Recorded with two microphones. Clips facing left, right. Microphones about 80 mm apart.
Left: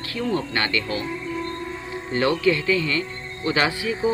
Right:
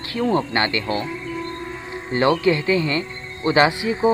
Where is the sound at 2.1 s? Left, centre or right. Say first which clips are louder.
Right 3 dB; right.